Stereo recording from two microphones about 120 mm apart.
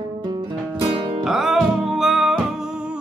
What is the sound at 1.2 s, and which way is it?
Music, 5° right (ahead or behind).